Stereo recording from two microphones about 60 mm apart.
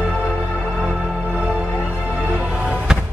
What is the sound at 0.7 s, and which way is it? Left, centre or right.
Music, centre.